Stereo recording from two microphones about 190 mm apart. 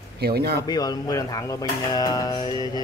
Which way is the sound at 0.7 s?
20° left (ahead or behind).